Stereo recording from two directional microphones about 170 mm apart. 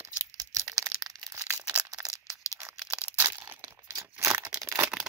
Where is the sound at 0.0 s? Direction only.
20° right (ahead or behind).